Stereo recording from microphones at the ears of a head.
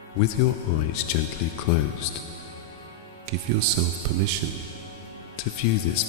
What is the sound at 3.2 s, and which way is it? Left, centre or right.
Speech, right.